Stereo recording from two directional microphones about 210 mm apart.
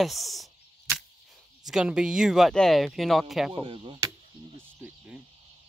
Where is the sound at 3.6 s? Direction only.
25° right (ahead or behind).